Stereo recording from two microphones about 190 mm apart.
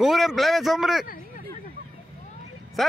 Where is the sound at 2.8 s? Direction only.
Centre (ahead or behind).